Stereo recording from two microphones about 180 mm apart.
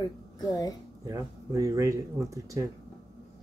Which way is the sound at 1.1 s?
20° right (ahead or behind).